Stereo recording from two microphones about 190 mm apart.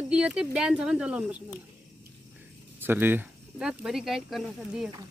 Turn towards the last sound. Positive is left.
turn(degrees=0)  # may be behind; listen again after turning